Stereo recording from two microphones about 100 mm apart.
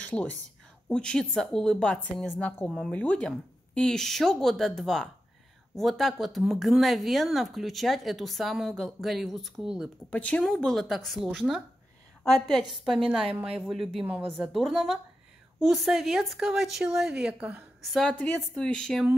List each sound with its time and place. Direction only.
0.1 s a woman's voice: 15° left (ahead or behind); by 9.8 s 5° right (ahead or behind)
10.1 s a woman's voice: 15° left (ahead or behind); by 14.0 s 5° right (ahead or behind)
14.0 s speech: 15° right (ahead or behind)
14.5 s speech: centre (ahead or behind)
18.1 s a woman's voice: 20° left (ahead or behind)
18.6 s a woman's voice: 5° left (ahead or behind)